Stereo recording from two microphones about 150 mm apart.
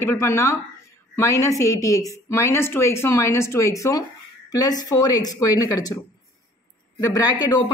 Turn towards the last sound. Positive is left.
turn(degrees=25)  # may be behind; listen again after turning